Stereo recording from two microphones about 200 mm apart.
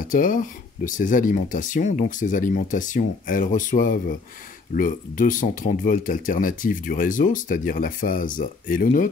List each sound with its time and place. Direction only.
0.1 s speech: 40° left (ahead or behind)